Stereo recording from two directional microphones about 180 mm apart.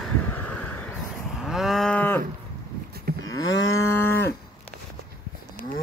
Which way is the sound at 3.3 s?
90° left.